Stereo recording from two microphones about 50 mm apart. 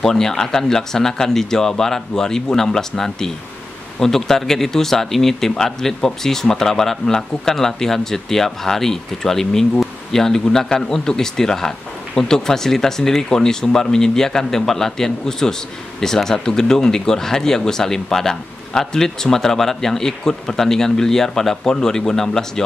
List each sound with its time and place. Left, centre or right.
0.0 s speech: centre